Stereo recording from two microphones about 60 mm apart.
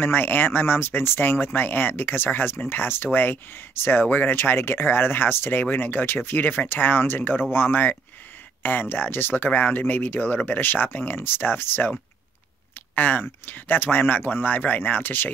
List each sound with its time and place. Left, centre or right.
0.0 s speech: left
12.9 s speech: left